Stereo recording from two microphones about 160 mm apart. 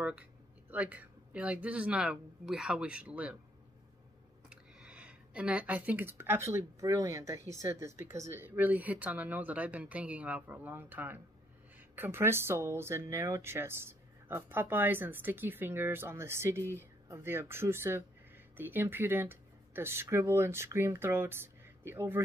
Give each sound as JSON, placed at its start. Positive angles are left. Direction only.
{"t": 0.0, "sound": "speech", "side_deg": -10}
{"t": 4.5, "sound": "speech", "side_deg": -5}